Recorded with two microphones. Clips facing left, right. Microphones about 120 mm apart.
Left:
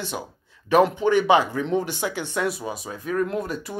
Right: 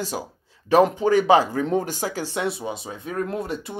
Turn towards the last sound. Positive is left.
turn(degrees=-30)  # may be behind; listen again after turning